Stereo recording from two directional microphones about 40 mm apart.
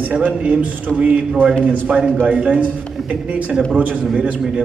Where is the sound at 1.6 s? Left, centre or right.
Right.